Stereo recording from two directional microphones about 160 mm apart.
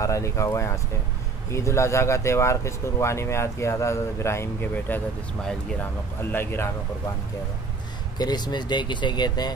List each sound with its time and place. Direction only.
0.0 s speech: 20° left (ahead or behind)
8.2 s speech: 25° left (ahead or behind)